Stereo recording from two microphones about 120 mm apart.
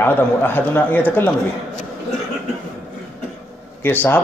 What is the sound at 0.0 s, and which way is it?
A man's voice, 15° left (ahead or behind).